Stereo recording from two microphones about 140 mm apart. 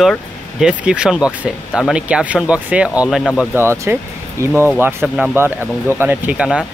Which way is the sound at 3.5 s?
15° right (ahead or behind).